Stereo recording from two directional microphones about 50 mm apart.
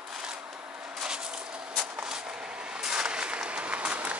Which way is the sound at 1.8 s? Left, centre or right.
Centre.